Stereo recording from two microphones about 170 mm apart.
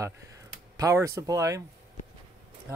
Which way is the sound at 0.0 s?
20° right (ahead or behind).